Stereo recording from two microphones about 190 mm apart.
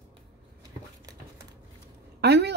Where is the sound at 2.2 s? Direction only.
60° right (ahead or behind).